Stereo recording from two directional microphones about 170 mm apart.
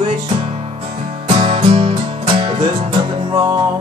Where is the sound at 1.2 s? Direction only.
30° right (ahead or behind).